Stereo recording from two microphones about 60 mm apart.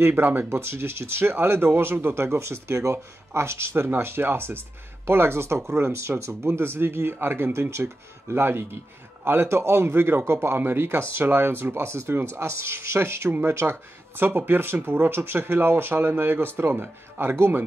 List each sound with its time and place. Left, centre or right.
0.0 s speech: right